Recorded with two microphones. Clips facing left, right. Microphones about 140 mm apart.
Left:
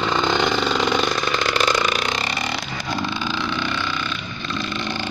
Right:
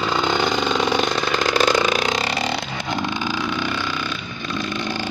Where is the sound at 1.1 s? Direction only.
40° right (ahead or behind).